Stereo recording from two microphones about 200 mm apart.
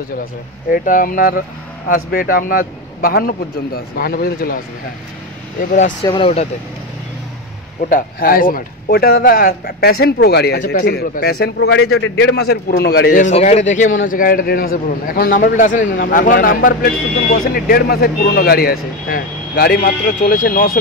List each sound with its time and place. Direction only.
0.7 s speech: 45° left (ahead or behind)
5.6 s speech: 40° left (ahead or behind)
6.0 s speech: 25° left (ahead or behind)
7.9 s speech: 45° left (ahead or behind)